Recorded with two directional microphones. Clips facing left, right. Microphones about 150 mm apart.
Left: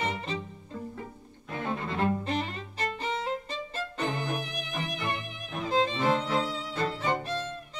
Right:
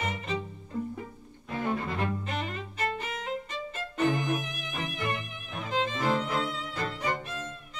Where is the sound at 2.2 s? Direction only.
35° left (ahead or behind).